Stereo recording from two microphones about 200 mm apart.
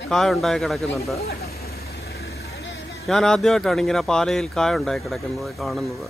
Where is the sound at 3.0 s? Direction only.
Centre (ahead or behind).